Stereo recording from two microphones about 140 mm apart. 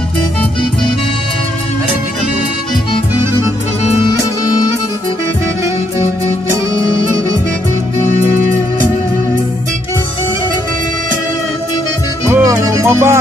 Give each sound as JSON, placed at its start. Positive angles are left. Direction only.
{"t": 12.3, "sound": "music", "side_deg": -20}